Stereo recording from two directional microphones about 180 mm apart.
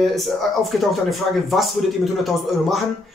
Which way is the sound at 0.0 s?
Centre (ahead or behind).